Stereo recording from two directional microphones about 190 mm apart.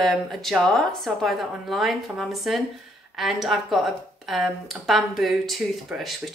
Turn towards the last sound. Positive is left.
turn(degrees=0)  # may be behind; listen again after turning